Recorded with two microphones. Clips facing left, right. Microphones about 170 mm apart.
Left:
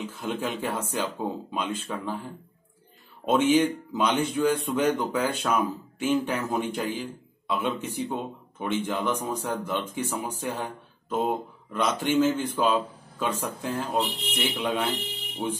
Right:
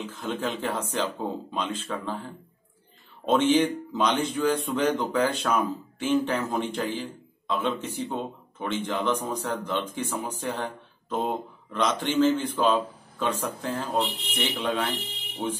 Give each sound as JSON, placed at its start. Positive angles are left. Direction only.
{"t": 0.0, "sound": "speech", "side_deg": 15}